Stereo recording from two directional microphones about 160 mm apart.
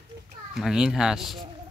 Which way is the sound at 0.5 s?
5° right (ahead or behind).